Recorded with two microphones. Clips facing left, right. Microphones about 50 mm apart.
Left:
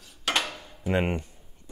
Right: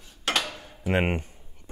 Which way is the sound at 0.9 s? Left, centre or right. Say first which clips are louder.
Right 1 dB; right.